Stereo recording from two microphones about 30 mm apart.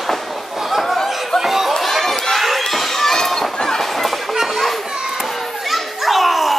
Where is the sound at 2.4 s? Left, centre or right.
Centre.